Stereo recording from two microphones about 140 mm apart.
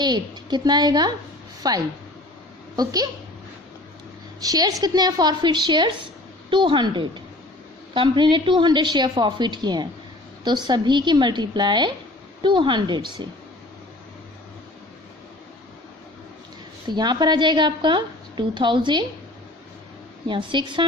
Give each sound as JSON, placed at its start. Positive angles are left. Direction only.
{"t": 0.0, "sound": "a woman's voice", "side_deg": -30}
{"t": 4.4, "sound": "a woman's voice", "side_deg": -25}
{"t": 16.9, "sound": "a woman's voice", "side_deg": -30}
{"t": 20.2, "sound": "a woman's voice", "side_deg": -35}